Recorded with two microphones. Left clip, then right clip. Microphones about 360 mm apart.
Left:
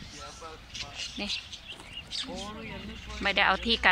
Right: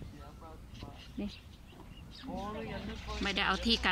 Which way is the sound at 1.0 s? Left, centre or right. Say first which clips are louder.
Left 11 dB; left.